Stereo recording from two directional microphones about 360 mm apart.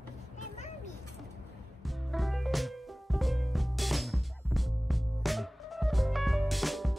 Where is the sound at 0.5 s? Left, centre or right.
Centre.